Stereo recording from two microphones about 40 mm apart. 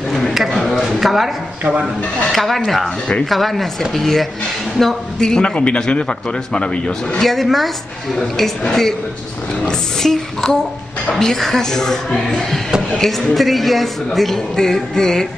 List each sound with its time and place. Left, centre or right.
0.3 s a sound: centre
0.9 s speech: centre
2.3 s a woman's voice: centre
5.2 s speech: left
7.2 s a woman's voice: centre
8.6 s speech: centre
10.0 s a woman's voice: centre
14.5 s speech: centre